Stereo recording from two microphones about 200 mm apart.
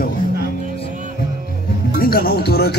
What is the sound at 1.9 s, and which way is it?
Speech, 50° left (ahead or behind).